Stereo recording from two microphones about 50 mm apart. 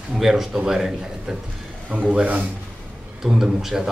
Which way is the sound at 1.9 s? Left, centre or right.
Right.